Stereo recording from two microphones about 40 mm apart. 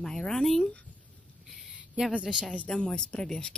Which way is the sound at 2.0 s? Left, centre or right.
Right.